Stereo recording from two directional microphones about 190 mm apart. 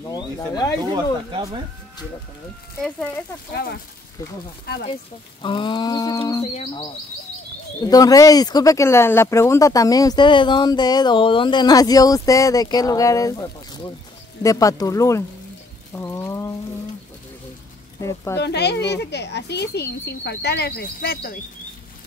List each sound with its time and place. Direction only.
0.1 s speech: 20° left (ahead or behind)
0.7 s speech: 20° right (ahead or behind)
2.8 s speech: 10° left (ahead or behind)
3.5 s speech: 55° left (ahead or behind)
5.4 s speech: 25° left (ahead or behind)
6.4 s speech: 35° left (ahead or behind)
7.8 s speech: 20° left (ahead or behind)
15.9 s bird: 15° left (ahead or behind)
18.0 s speech: 15° left (ahead or behind)
18.4 s speech: 60° left (ahead or behind)